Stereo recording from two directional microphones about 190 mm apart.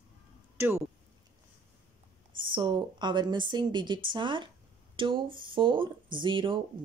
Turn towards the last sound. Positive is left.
turn(degrees=-25)  # may be behind; listen again after turning